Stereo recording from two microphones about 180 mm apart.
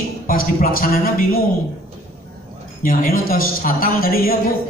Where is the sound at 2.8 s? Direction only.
50° left (ahead or behind).